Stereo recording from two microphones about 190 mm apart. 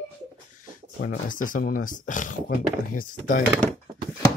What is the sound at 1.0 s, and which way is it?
Speech, 45° left (ahead or behind).